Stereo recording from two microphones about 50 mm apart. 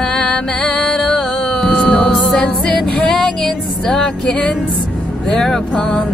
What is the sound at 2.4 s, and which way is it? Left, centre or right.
Female singing, centre.